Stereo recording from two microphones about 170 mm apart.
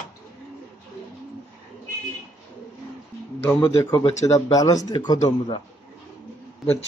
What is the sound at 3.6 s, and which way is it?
Speech, 25° left (ahead or behind).